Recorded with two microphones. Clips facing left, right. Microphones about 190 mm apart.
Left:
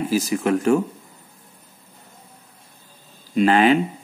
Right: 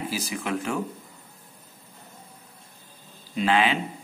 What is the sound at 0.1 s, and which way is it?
Speech, 45° left (ahead or behind).